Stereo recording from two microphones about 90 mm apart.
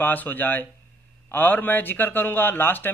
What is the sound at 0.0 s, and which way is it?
Speech, 20° left (ahead or behind).